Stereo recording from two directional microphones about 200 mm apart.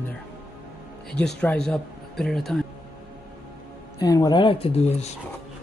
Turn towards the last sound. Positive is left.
turn(degrees=30)  # may be behind; listen again after turning